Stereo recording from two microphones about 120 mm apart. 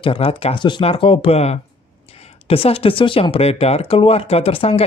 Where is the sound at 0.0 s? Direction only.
50° left (ahead or behind).